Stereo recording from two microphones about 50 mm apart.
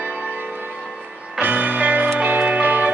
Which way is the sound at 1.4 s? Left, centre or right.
Right.